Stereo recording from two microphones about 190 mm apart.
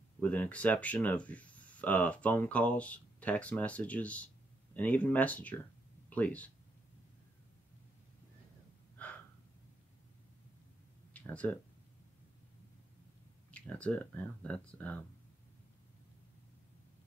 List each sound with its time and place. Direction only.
0.2 s speech: 10° left (ahead or behind)
9.0 s gasp: 10° left (ahead or behind)
11.1 s a sound: 10° left (ahead or behind)
13.5 s speech: 5° left (ahead or behind)